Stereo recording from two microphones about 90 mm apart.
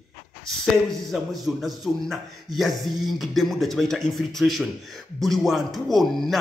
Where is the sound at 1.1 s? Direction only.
Centre (ahead or behind).